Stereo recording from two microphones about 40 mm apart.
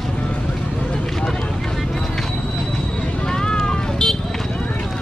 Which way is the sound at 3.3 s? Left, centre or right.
Centre.